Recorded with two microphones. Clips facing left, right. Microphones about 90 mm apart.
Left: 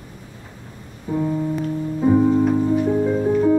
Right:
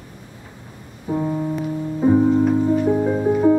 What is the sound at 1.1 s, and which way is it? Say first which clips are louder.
Music: even; 20° right (ahead or behind).